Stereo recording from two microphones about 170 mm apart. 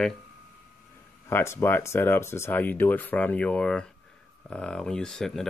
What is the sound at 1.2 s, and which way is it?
Speech, 15° left (ahead or behind).